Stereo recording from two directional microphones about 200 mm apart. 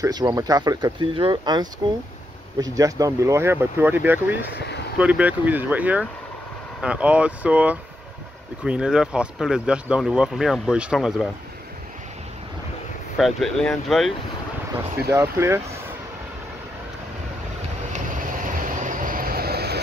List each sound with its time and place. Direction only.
0.0 s speech: 20° right (ahead or behind); by 11.2 s centre (ahead or behind)
13.2 s speech: centre (ahead or behind)
15.0 s speech: 15° right (ahead or behind)
18.4 s vehicle: 40° right (ahead or behind)